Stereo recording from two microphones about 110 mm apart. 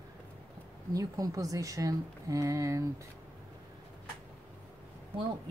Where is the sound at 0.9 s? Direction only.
30° right (ahead or behind).